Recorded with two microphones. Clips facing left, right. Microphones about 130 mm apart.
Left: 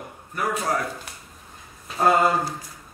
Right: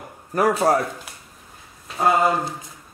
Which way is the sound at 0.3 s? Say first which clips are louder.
Right 8 dB; 35° right (ahead or behind).